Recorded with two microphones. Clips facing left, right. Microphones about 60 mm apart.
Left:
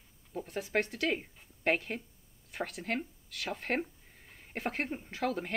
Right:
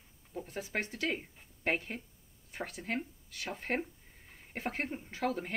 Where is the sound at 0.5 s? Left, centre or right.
Left.